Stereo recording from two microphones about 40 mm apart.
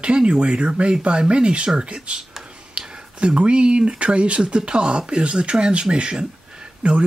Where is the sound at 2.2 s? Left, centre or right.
Centre.